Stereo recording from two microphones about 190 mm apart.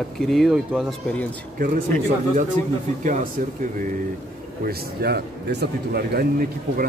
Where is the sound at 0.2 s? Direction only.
Centre (ahead or behind).